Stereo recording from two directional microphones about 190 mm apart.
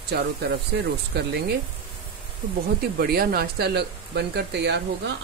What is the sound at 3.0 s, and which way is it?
Speech, 50° right (ahead or behind).